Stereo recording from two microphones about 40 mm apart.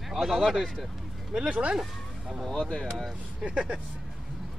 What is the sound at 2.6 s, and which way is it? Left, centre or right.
Speech, left.